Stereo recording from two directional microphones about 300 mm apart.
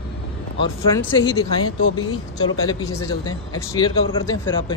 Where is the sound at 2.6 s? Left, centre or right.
Centre.